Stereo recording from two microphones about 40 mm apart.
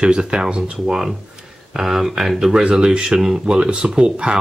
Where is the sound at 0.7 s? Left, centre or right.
Centre.